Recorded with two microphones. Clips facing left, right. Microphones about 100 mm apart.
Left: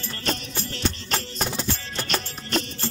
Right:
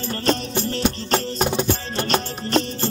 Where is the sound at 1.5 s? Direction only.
60° right (ahead or behind).